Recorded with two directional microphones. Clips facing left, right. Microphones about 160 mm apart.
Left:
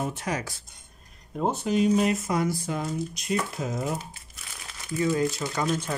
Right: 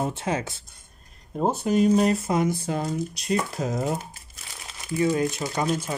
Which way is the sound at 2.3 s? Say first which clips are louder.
Right 3 dB; 25° right (ahead or behind).